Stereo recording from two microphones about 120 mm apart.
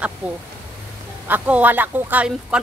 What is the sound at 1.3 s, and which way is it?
Speech, 15° right (ahead or behind).